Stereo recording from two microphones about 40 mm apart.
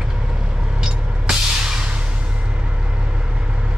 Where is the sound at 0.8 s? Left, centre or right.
Centre.